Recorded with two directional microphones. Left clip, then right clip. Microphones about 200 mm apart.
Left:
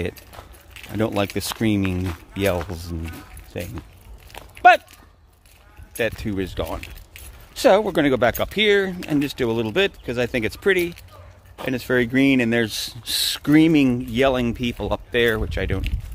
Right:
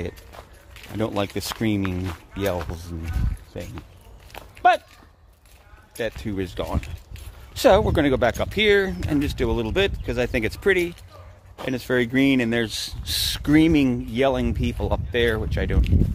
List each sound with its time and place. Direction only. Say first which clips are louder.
0.7 s speech: left 3 dB; 25° left (ahead or behind)
2.3 s speech: left 4 dB; 30° left (ahead or behind)
4.3 s a sound: left 1 dB; 10° left (ahead or behind)
5.9 s speech: left 4 dB; 30° left (ahead or behind); by 6.9 s 15° left (ahead or behind)
7.5 s speech: left 1 dB; 5° left (ahead or behind)